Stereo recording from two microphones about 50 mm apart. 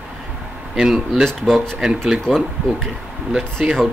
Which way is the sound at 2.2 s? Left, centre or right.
Centre.